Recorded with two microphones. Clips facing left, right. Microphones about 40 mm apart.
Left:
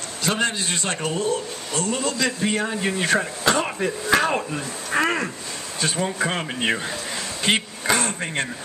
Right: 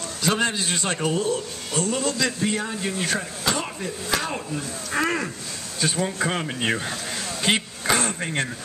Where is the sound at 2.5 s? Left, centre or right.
Left.